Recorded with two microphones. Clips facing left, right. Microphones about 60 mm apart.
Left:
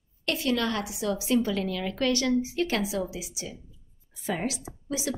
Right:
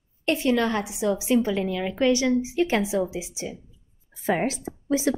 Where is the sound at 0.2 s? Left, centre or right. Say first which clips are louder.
Right 5 dB; right.